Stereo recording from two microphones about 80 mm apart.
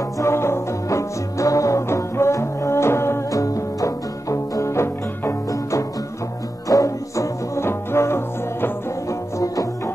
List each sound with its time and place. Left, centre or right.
0.2 s music: left
3.3 s music: left